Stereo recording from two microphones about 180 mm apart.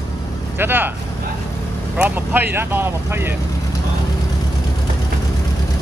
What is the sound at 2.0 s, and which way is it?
Speech, 10° right (ahead or behind).